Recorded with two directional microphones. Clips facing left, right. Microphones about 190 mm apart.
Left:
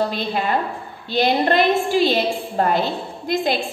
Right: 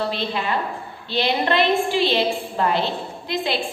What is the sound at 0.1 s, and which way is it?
A woman's voice, 45° left (ahead or behind).